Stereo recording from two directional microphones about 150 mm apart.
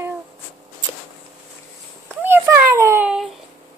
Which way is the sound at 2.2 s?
15° right (ahead or behind).